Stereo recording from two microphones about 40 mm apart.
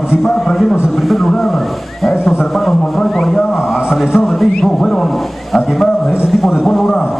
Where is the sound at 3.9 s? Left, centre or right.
Centre.